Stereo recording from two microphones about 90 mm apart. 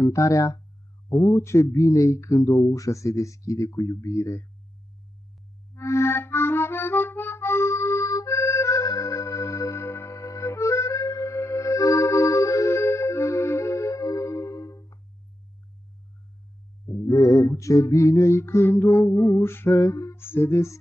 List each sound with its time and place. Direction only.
0.0 s music: 35° left (ahead or behind)
5.8 s accordion: 30° left (ahead or behind)
16.8 s music: 40° left (ahead or behind)